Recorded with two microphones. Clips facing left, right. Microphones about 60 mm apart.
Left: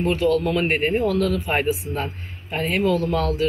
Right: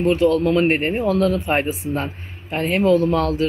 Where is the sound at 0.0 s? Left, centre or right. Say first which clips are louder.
Right 3 dB; right.